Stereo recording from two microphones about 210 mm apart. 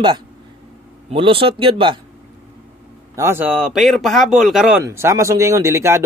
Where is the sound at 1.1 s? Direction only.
25° right (ahead or behind).